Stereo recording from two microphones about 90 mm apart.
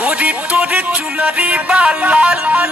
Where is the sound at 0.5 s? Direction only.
15° right (ahead or behind).